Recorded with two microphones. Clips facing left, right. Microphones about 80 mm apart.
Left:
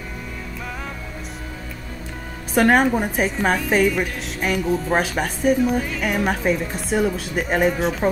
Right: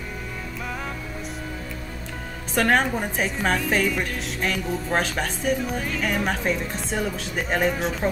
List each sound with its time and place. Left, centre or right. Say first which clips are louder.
2.5 s a woman's voice: left 5 dB; centre